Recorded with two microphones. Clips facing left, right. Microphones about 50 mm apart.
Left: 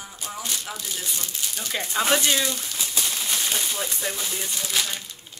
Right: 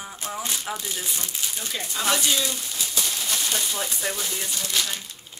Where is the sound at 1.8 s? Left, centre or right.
Left.